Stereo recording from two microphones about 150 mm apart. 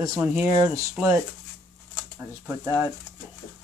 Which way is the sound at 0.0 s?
25° right (ahead or behind).